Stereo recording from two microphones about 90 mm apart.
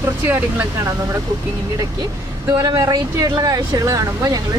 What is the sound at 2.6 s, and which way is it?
Speech, 45° right (ahead or behind).